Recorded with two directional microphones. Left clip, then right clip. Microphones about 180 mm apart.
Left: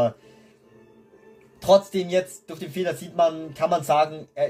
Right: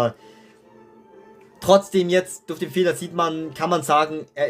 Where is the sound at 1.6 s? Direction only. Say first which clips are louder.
Right 2 dB; 40° right (ahead or behind).